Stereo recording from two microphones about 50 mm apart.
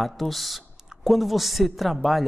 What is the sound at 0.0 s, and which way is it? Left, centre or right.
A woman's voice, centre.